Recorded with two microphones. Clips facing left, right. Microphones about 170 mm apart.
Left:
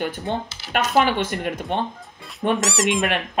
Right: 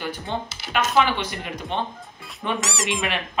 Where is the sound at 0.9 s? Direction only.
50° left (ahead or behind).